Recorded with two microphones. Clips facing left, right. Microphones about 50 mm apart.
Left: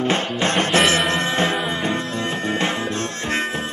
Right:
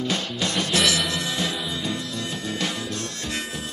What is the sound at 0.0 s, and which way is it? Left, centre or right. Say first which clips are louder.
Music: left 6 dB; left.